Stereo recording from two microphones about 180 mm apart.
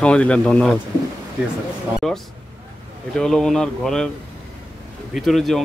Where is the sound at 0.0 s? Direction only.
5° left (ahead or behind).